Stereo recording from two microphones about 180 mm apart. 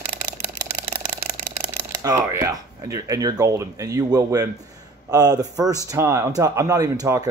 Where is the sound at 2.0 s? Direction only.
20° right (ahead or behind).